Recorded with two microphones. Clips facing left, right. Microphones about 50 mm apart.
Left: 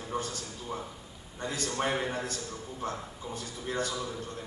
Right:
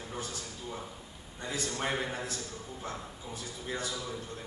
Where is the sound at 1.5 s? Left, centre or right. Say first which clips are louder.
Left 2 dB; left.